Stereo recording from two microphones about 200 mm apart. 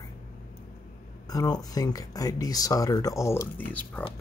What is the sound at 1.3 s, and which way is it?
Speech, 20° left (ahead or behind).